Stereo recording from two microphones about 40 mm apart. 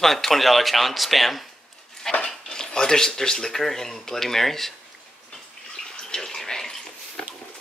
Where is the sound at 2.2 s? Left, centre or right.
Centre.